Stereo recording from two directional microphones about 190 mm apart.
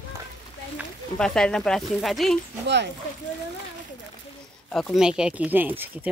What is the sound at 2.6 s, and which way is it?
Speech, 65° right (ahead or behind).